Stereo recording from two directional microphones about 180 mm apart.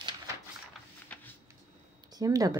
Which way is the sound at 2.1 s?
20° right (ahead or behind).